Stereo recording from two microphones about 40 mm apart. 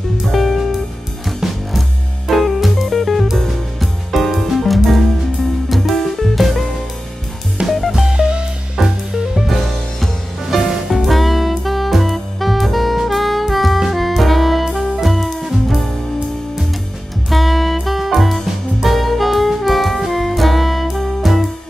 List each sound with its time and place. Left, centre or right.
0.3 s music: centre
7.6 s music: right
7.9 s music: centre
8.2 s music: right
8.7 s music: centre
9.5 s music: centre
17.3 s music: centre
18.8 s saxophone: centre